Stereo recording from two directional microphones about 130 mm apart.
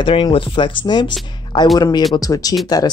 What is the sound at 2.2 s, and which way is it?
Speech, 30° left (ahead or behind).